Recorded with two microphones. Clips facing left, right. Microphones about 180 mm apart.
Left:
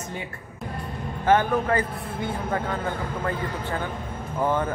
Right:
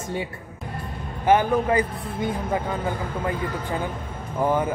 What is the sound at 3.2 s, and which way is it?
A man's voice, 15° right (ahead or behind).